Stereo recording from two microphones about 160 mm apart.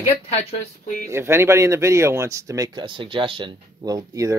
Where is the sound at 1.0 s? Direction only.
15° right (ahead or behind).